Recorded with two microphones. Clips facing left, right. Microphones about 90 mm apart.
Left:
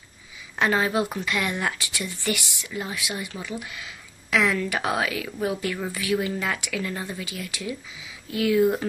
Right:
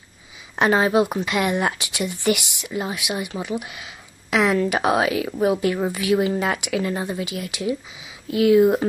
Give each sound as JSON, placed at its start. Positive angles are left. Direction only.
{"t": 0.6, "sound": "a woman's voice", "side_deg": -20}